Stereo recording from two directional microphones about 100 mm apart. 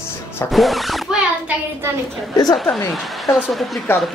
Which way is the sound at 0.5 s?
Centre (ahead or behind).